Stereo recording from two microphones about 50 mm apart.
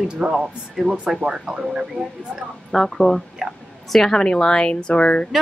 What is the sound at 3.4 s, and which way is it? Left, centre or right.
Speech, centre.